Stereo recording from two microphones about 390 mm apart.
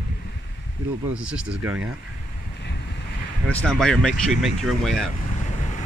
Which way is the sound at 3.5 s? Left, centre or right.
Centre.